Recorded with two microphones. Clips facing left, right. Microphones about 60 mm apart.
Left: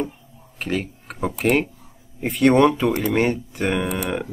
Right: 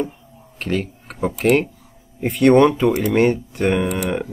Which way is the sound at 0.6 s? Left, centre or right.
Centre.